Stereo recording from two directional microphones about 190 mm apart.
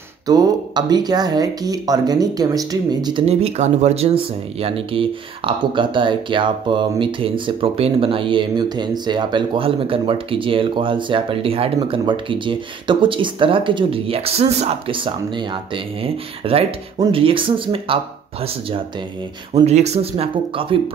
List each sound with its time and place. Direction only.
0.3 s speech: 20° right (ahead or behind)